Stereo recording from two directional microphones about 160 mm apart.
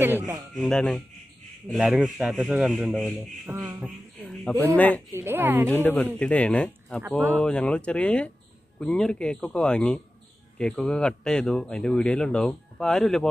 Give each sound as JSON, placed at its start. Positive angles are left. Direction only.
{"t": 0.6, "sound": "speech", "side_deg": 0}
{"t": 3.4, "sound": "a sound", "side_deg": -20}
{"t": 3.8, "sound": "a sound", "side_deg": 0}
{"t": 4.7, "sound": "speech", "side_deg": 10}
{"t": 5.1, "sound": "speech", "side_deg": -15}
{"t": 5.7, "sound": "speech", "side_deg": 10}
{"t": 7.0, "sound": "speech", "side_deg": -10}
{"t": 7.3, "sound": "speech", "side_deg": 5}